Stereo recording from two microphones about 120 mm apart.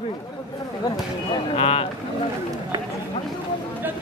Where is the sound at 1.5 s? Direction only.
55° left (ahead or behind).